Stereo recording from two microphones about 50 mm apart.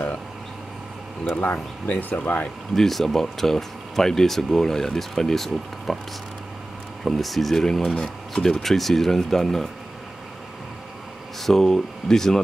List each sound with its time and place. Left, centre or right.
1.9 s speech: left
2.7 s speech: centre
7.1 s speech: centre
11.4 s speech: centre